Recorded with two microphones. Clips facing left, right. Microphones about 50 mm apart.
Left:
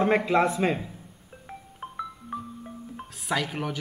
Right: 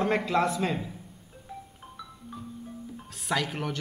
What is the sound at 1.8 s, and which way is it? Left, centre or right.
Music, left.